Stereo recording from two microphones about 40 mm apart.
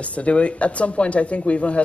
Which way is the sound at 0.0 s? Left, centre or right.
Left.